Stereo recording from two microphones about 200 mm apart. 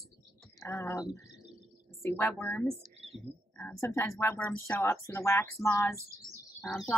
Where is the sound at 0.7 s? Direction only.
15° left (ahead or behind).